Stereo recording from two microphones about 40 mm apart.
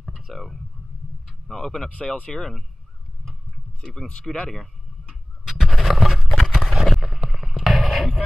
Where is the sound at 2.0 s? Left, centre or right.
Left.